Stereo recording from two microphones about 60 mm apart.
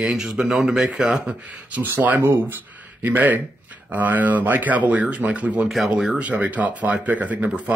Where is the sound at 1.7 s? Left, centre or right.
Right.